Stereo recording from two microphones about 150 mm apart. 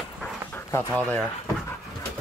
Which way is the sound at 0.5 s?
20° left (ahead or behind).